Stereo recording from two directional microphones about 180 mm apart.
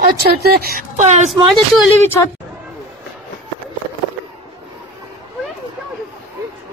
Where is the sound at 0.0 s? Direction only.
60° right (ahead or behind); by 1.3 s 40° right (ahead or behind).